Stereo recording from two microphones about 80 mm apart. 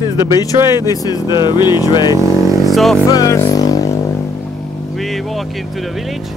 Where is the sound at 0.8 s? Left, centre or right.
Left.